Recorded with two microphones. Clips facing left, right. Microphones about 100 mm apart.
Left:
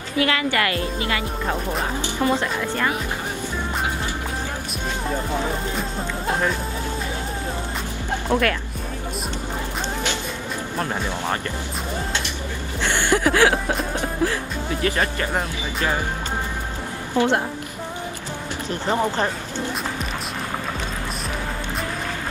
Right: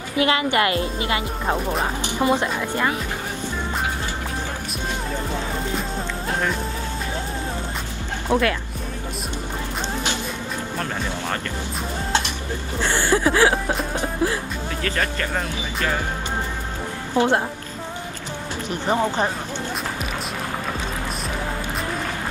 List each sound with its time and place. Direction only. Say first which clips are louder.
0.2 s speech: right 2 dB; 25° right (ahead or behind)
8.3 s speech: right 1 dB; 15° right (ahead or behind)
13.1 s speech: even; 20° right (ahead or behind)
13.9 s music: even; 20° right (ahead or behind)
14.8 s speech: left 2 dB; 20° left (ahead or behind)
17.1 s a woman's voice: right 1 dB; 15° right (ahead or behind)
18.7 s speech: right 1 dB; 15° right (ahead or behind)